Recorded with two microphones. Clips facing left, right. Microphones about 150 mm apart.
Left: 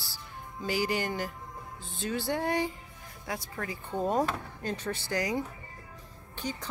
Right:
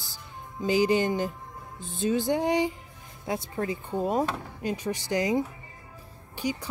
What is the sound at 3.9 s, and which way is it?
Speech, 10° right (ahead or behind).